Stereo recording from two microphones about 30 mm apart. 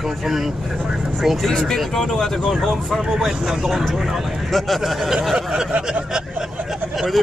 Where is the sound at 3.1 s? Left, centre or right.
Centre.